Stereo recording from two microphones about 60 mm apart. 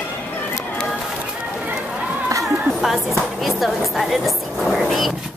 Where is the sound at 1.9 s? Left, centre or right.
Right.